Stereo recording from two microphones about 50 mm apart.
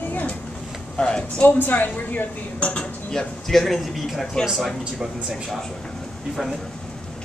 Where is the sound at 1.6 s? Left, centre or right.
Left.